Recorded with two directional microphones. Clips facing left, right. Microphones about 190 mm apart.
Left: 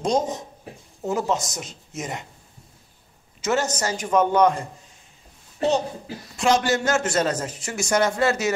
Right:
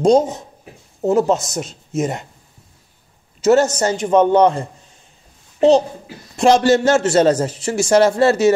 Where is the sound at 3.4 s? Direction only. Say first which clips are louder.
Right 10 dB; 30° right (ahead or behind).